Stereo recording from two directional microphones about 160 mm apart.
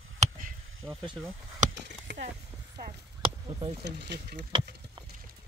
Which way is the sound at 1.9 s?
90° right.